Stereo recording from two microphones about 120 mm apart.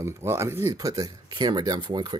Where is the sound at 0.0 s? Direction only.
20° right (ahead or behind).